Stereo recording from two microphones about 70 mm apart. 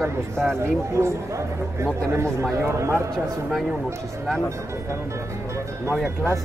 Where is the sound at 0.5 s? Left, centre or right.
Right.